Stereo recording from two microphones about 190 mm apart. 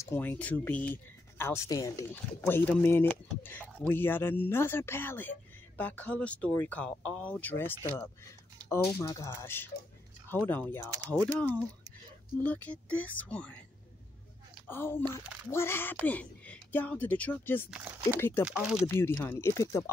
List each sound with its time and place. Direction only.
0.0 s speech: 10° left (ahead or behind)
14.7 s speech: 10° left (ahead or behind)
17.6 s speech: 5° right (ahead or behind)
18.9 s speech: 10° left (ahead or behind)